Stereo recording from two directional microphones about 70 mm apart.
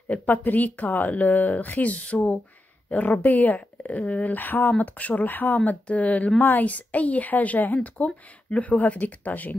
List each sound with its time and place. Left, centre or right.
0.1 s a woman's voice: left